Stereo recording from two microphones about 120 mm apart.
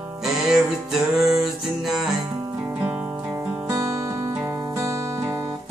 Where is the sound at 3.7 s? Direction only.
25° right (ahead or behind).